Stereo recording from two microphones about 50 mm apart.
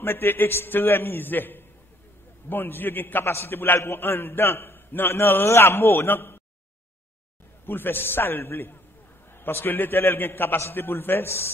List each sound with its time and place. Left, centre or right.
0.0 s a man's voice: left
3.3 s a man's voice: left
7.6 s a man's voice: left